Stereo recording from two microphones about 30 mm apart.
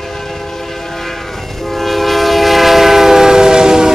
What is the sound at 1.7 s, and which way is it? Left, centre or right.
Train, centre.